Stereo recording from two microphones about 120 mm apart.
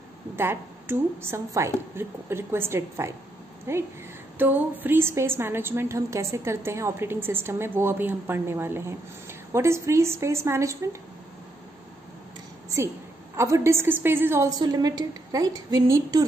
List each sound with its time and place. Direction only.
0.4 s a woman's voice: 20° right (ahead or behind)
12.6 s a sound: 25° right (ahead or behind)
13.4 s a woman's voice: 25° right (ahead or behind)